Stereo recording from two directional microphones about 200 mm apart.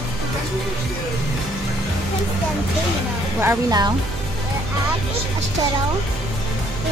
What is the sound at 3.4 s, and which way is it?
Speech, 20° right (ahead or behind).